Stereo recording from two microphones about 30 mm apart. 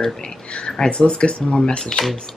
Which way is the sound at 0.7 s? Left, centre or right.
Left.